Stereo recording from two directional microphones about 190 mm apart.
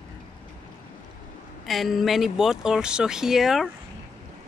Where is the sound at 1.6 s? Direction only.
Centre (ahead or behind).